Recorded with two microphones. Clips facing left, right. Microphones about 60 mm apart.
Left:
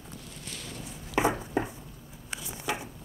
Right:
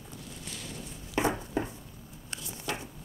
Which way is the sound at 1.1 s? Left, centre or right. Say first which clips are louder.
Left 2 dB; centre.